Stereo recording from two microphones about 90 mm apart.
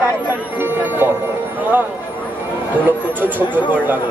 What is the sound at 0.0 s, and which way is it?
Speech, 20° right (ahead or behind).